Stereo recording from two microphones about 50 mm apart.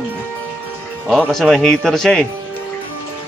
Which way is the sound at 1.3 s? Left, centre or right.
Centre.